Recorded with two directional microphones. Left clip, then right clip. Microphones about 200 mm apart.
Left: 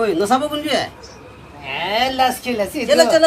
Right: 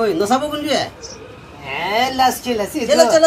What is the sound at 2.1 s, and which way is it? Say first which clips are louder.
Speech: right 1 dB; 35° left (ahead or behind).